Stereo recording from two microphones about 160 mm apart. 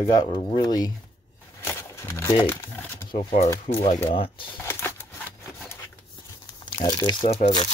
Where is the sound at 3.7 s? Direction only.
50° left (ahead or behind).